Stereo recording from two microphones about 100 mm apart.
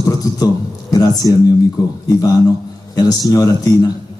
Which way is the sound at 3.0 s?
40° left (ahead or behind).